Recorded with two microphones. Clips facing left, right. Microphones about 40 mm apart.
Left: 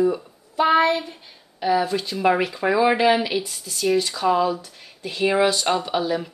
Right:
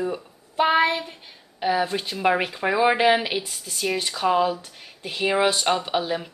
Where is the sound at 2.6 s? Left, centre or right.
Centre.